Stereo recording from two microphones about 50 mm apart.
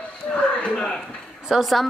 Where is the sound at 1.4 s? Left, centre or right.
Centre.